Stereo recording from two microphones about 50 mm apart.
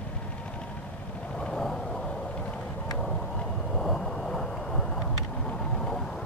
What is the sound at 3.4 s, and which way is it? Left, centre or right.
Boat, centre.